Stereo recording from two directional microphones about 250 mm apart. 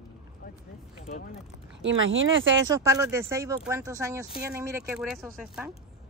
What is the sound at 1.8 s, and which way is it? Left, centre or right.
Speech, right.